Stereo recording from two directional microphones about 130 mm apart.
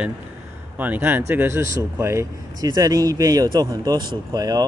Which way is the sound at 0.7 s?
15° right (ahead or behind).